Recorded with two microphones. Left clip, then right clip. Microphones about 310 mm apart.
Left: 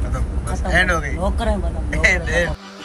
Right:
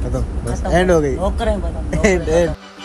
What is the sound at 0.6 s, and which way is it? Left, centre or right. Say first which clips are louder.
Speech: right 3 dB; right.